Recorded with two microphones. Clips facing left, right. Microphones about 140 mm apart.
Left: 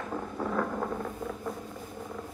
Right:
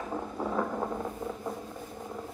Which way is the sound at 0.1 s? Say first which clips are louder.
Even; 15° right (ahead or behind).